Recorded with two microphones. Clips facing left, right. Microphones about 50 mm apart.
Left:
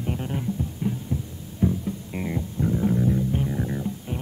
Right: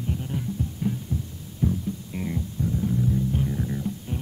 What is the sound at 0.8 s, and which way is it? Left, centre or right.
Heart sounds, centre.